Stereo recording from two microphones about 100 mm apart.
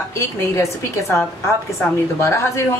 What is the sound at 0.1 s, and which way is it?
A woman's voice, 30° left (ahead or behind).